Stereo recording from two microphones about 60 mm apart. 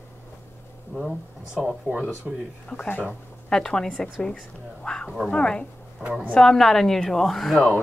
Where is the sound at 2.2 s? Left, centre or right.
Centre.